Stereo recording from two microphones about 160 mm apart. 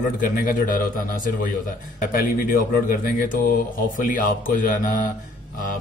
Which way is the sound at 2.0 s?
60° left (ahead or behind).